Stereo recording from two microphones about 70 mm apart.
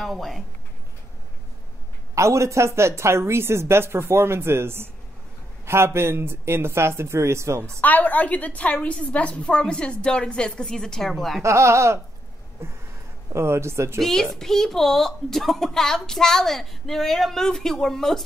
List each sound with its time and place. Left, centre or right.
0.0 s a woman's voice: centre
2.1 s speech: right
7.8 s a woman's voice: left; by 11.4 s centre
11.4 s speech: right
13.3 s speech: right
13.9 s a woman's voice: centre